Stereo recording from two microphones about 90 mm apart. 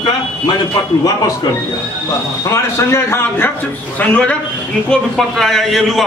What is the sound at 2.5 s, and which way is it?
Speech, 30° left (ahead or behind).